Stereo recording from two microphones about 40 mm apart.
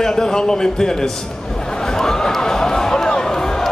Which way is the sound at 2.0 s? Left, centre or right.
Centre.